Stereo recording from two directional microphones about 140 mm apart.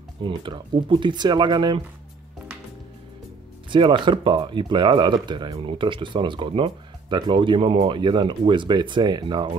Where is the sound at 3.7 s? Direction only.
35° right (ahead or behind).